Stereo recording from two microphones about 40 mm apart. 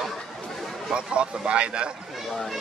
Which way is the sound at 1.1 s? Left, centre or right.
Right.